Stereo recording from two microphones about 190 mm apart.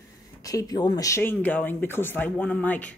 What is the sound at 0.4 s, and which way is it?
Speech, 20° left (ahead or behind).